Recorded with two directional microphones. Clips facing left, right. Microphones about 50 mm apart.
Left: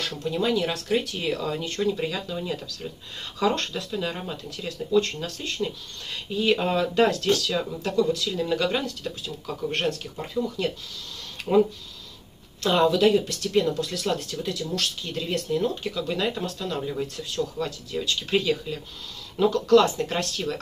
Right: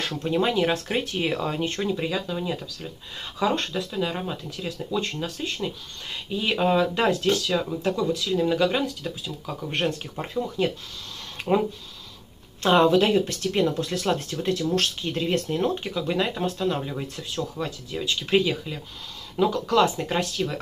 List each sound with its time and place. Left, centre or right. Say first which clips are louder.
0.0 s speech: right 2 dB; right
2.0 s speech: right 2 dB; centre
9.8 s speech: even; right
11.4 s a sound: right 3 dB; right
12.6 s speech: right 1 dB; right
15.9 s speech: right 1 dB; right